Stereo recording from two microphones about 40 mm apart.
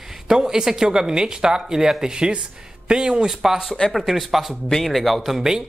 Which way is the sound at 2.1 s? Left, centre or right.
Right.